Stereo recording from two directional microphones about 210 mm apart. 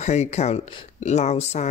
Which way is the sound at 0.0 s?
35° left (ahead or behind).